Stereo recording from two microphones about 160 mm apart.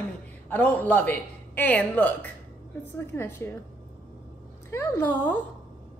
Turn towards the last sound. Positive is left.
turn(degrees=10)  # may be behind; listen again after turning